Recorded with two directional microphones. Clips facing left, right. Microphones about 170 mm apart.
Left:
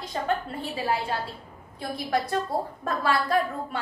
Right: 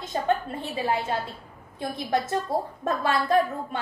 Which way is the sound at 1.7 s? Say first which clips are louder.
Right 1 dB; 20° right (ahead or behind).